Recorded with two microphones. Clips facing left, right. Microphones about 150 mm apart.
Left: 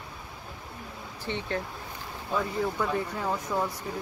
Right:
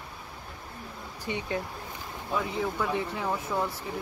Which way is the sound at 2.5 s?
Centre (ahead or behind).